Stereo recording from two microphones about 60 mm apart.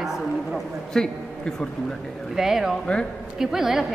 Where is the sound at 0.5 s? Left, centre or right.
Centre.